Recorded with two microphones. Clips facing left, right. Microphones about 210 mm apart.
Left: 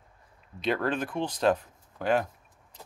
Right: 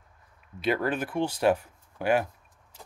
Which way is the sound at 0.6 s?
5° right (ahead or behind).